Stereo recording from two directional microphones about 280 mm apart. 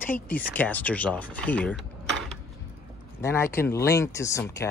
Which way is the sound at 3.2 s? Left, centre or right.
Centre.